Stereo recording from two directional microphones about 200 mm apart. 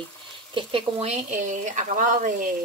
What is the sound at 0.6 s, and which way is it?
Speech, 25° right (ahead or behind).